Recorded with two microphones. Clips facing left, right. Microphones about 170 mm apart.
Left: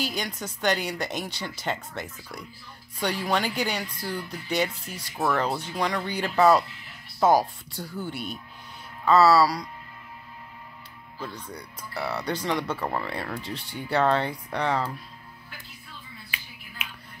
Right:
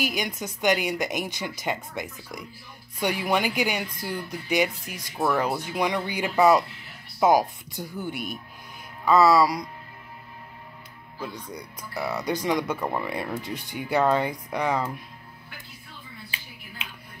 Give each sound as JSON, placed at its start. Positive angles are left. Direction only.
{"t": 0.0, "sound": "speech", "side_deg": -15}
{"t": 11.4, "sound": "speech", "side_deg": -15}